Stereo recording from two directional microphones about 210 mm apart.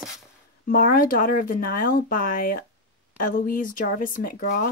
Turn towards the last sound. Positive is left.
turn(degrees=45)  # may be behind; listen again after turning